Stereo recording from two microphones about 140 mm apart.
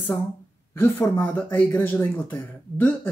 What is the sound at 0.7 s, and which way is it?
Speech, 15° left (ahead or behind).